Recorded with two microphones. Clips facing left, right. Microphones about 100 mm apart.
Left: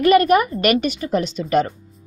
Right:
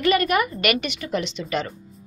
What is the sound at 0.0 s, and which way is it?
A woman's voice, 40° left (ahead or behind).